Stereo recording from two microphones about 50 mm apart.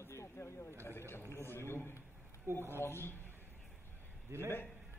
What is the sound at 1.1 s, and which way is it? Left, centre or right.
Speech, left.